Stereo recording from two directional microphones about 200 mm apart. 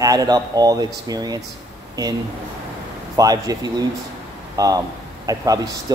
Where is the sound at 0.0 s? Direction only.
15° right (ahead or behind).